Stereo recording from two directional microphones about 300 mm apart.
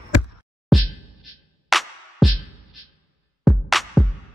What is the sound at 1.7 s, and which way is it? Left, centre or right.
Music, centre.